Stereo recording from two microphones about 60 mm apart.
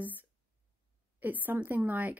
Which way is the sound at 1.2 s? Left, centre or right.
Right.